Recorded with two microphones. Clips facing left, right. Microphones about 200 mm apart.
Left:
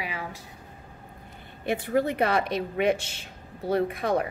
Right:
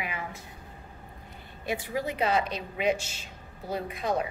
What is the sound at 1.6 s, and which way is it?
Speech, 55° left (ahead or behind).